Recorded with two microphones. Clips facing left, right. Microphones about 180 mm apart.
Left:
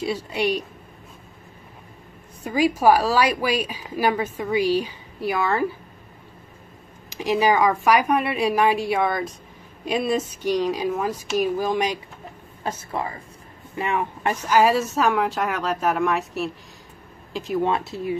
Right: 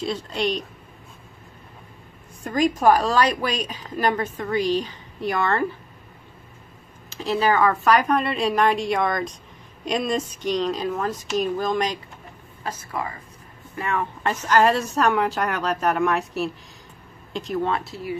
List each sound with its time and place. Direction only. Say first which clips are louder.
0.0 s a woman's voice: left 1 dB; 10° left (ahead or behind)
2.4 s a woman's voice: left 1 dB; 10° left (ahead or behind)
7.1 s a woman's voice: left 2 dB; 15° left (ahead or behind)
12.6 s speech: left 2 dB; 25° left (ahead or behind)
13.7 s speech: left 1 dB; 15° left (ahead or behind)
17.6 s speech: left 2 dB; 20° left (ahead or behind)